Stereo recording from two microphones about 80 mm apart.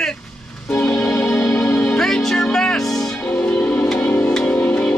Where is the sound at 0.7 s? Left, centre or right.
Centre.